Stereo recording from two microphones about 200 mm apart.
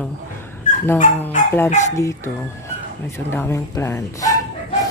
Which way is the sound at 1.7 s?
35° left (ahead or behind).